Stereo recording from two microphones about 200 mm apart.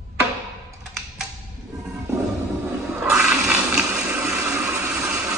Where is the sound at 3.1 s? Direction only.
5° right (ahead or behind).